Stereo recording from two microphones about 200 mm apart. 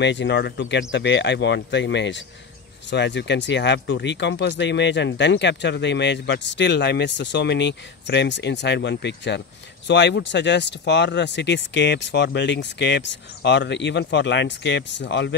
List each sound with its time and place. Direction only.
0.0 s speech: 60° left (ahead or behind)